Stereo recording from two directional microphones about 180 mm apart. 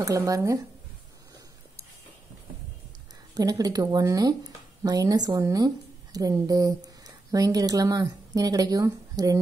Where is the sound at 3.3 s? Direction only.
20° right (ahead or behind).